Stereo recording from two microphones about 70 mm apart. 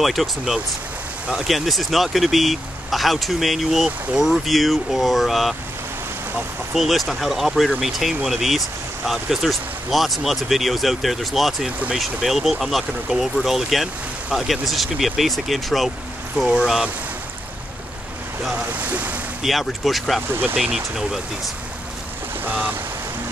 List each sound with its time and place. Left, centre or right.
0.0 s speech: centre
6.7 s speech: centre
18.5 s speech: right
19.4 s speech: centre
22.4 s speech: right